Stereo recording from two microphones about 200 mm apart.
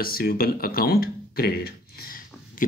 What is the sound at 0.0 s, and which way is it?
Speech, 45° left (ahead or behind).